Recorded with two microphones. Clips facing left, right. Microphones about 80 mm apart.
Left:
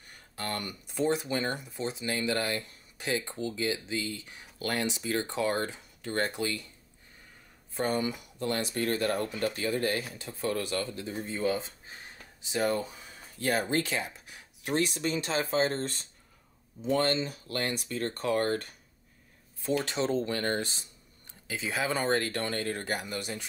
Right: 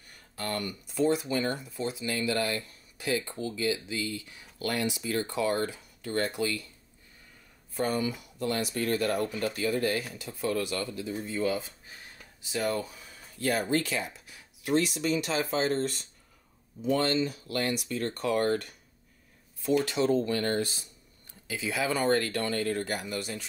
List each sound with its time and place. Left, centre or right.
0.4 s speech: left
7.7 s speech: left